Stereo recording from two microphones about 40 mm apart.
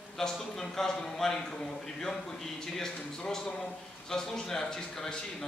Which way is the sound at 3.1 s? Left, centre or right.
Centre.